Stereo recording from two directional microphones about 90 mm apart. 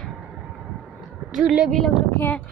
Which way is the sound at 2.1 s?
20° left (ahead or behind).